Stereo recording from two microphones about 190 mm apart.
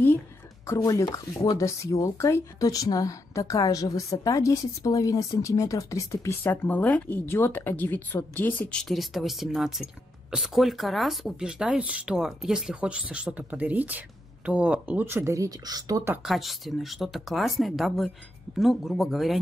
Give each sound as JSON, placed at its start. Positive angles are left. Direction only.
{"t": 0.7, "sound": "speech", "side_deg": 15}
{"t": 16.2, "sound": "speech", "side_deg": 0}